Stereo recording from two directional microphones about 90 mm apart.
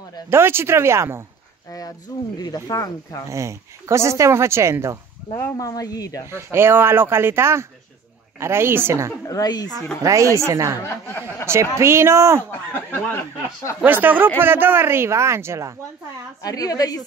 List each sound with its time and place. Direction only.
0.3 s speech: 25° right (ahead or behind)
1.7 s speech: 45° left (ahead or behind)
3.3 s speech: 35° right (ahead or behind)
5.3 s speech: 25° left (ahead or behind)
5.6 s speech: 40° left (ahead or behind)
6.3 s speech: 25° right (ahead or behind)
9.3 s speech: 45° left (ahead or behind)
10.0 s speech: 35° right (ahead or behind)
12.4 s speech: 25° left (ahead or behind)
13.8 s speech: 20° right (ahead or behind)
16.4 s speech: 45° left (ahead or behind)